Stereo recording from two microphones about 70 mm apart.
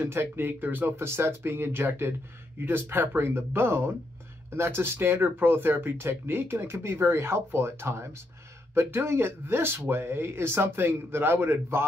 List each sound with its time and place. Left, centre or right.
0.0 s speech: right